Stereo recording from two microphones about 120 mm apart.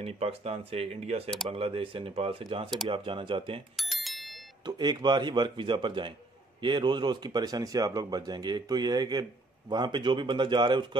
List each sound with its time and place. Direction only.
0.0 s speech: 55° right (ahead or behind)
3.7 s bicycle bell: centre (ahead or behind)
4.6 s speech: 35° right (ahead or behind)